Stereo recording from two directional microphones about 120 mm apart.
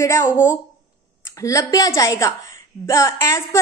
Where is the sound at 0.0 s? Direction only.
25° left (ahead or behind).